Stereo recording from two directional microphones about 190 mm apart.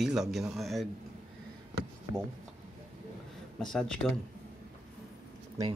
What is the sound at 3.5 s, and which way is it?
Speech, centre (ahead or behind).